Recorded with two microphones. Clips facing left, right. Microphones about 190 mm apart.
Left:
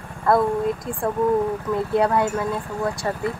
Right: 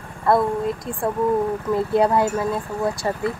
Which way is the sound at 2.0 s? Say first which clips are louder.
Right 2 dB; 25° right (ahead or behind).